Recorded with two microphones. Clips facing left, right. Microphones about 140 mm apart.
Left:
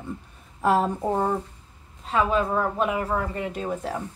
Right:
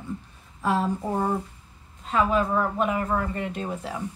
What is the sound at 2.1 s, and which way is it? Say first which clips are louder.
Speech: even; 30° left (ahead or behind).